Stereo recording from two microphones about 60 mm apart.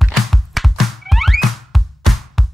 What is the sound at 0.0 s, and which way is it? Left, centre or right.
Music, centre.